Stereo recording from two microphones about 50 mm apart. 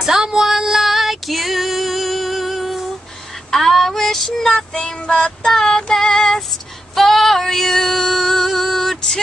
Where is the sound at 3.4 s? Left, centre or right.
Centre.